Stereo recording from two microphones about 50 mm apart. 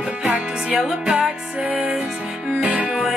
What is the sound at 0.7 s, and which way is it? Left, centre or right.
Music, centre.